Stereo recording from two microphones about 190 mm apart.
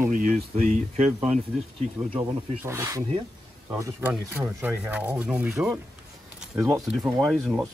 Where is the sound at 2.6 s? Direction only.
15° right (ahead or behind).